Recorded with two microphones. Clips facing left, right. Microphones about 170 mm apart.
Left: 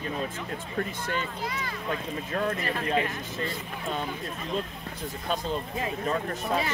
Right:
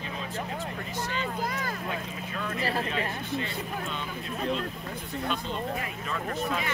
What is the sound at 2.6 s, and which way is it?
Speech, 35° right (ahead or behind).